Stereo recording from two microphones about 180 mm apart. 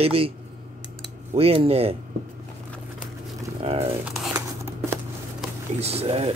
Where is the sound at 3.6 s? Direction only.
35° right (ahead or behind).